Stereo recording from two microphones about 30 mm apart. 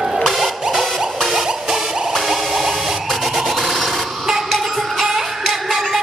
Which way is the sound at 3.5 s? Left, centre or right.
Centre.